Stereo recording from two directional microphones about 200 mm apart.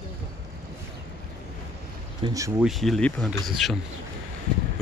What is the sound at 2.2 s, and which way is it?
Speech, 15° right (ahead or behind).